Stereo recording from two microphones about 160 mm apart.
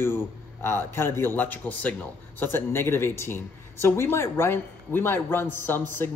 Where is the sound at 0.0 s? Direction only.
15° left (ahead or behind).